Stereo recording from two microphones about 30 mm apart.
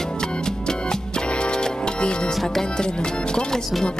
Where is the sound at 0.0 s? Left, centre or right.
Left.